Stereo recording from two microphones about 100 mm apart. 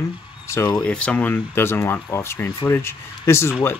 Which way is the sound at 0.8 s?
10° left (ahead or behind).